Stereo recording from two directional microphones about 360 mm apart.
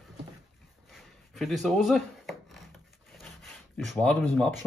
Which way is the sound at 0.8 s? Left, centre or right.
Centre.